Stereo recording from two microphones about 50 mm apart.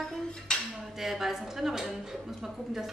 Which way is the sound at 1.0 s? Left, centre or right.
Centre.